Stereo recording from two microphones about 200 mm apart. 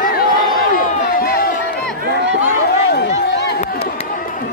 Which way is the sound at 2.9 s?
55° left (ahead or behind).